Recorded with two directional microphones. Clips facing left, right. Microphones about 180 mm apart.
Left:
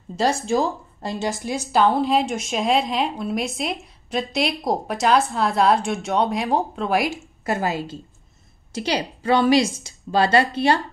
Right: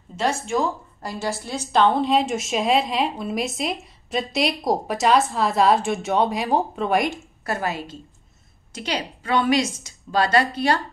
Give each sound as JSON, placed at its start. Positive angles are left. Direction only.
{"t": 0.1, "sound": "speech", "side_deg": 35}
{"t": 1.2, "sound": "a woman's voice", "side_deg": 15}
{"t": 7.4, "sound": "a woman's voice", "side_deg": 25}